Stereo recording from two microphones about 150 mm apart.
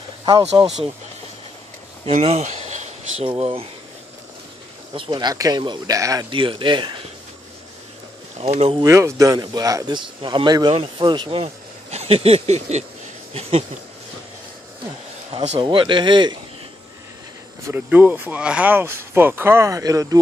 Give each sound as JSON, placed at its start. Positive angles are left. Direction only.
{"t": 2.0, "sound": "a sound", "side_deg": -45}
{"t": 3.3, "sound": "speech", "side_deg": -40}
{"t": 4.9, "sound": "speech", "side_deg": -35}
{"t": 6.3, "sound": "speech", "side_deg": -35}
{"t": 8.4, "sound": "speech", "side_deg": -45}
{"t": 8.8, "sound": "speech", "side_deg": -20}
{"t": 11.4, "sound": "speech", "side_deg": -45}
{"t": 15.3, "sound": "speech", "side_deg": -45}
{"t": 15.6, "sound": "speech", "side_deg": -35}
{"t": 17.6, "sound": "speech", "side_deg": -10}